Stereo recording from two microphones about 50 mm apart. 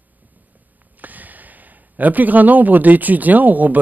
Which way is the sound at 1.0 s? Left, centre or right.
Right.